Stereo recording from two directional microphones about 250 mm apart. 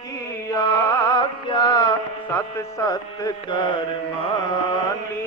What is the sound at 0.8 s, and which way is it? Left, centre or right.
Music, centre.